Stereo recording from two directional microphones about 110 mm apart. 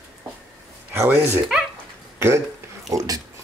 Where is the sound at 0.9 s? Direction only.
25° right (ahead or behind).